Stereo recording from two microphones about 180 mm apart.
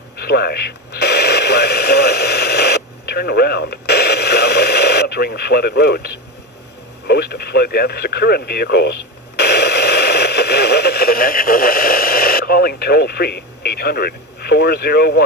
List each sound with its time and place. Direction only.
0.2 s radio: 65° left (ahead or behind)
7.1 s speech: 65° left (ahead or behind)
9.4 s radio: 65° left (ahead or behind)